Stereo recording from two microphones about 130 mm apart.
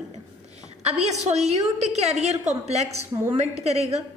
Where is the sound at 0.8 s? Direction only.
55° right (ahead or behind).